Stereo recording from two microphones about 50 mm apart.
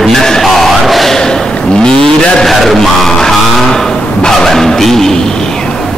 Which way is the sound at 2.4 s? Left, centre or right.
Centre.